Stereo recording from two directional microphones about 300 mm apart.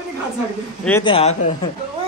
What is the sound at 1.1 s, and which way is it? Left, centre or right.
Speech, centre.